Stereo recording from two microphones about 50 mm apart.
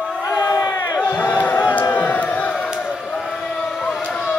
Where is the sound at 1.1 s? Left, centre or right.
Left.